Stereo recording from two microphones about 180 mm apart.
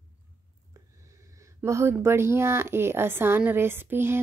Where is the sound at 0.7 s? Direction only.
15° right (ahead or behind).